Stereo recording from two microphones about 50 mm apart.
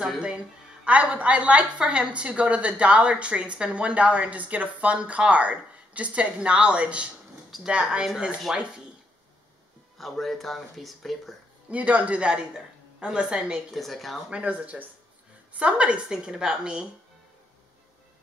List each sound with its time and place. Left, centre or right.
1.1 s a woman's voice: right
9.9 s speech: centre
11.7 s a woman's voice: right
13.7 s speech: centre
14.3 s a woman's voice: right